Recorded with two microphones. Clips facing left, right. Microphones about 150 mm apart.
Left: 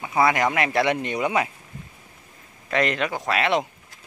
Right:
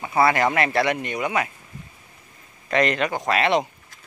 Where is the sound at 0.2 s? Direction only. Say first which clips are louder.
Right 1 dB; 15° left (ahead or behind).